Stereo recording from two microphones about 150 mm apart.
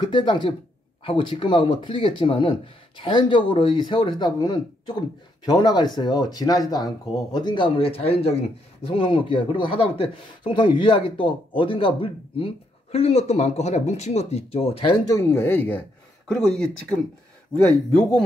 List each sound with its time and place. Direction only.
0.1 s a man's voice: 35° left (ahead or behind)
15.1 s speech: 15° left (ahead or behind)
16.3 s speech: 5° left (ahead or behind)